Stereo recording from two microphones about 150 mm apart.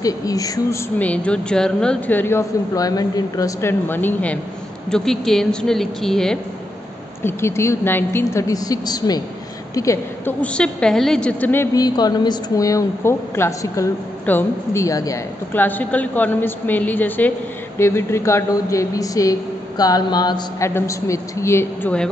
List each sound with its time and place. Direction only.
0.0 s a man's voice: 25° left (ahead or behind)
0.9 s a woman's voice: 10° left (ahead or behind)
7.2 s a woman's voice: 15° left (ahead or behind)
10.4 s a woman's voice: 5° left (ahead or behind); by 15.6 s 20° left (ahead or behind)
15.6 s a woman's voice: 10° left (ahead or behind)